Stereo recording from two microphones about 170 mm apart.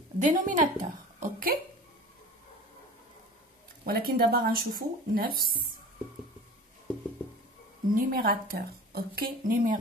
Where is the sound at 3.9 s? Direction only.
60° right (ahead or behind).